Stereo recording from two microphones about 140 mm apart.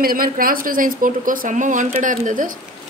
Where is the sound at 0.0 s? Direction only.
90° right.